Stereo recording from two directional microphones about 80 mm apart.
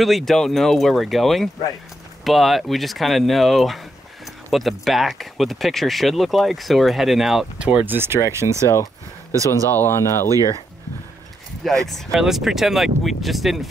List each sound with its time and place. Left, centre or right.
0.0 s speech: centre
7.8 s speech: right
9.5 s speech: left
11.8 s speech: centre